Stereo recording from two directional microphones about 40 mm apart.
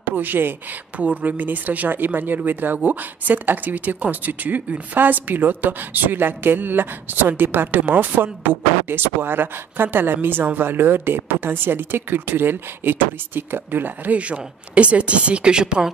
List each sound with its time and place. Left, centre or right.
0.0 s speech: right
0.9 s speech: right
14.1 s speech: right